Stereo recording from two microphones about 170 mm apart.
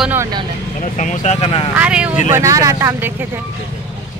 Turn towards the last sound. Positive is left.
turn(degrees=-20)  # may be behind; listen again after turning